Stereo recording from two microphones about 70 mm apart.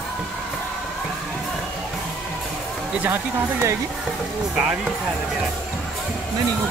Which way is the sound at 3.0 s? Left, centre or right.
Right.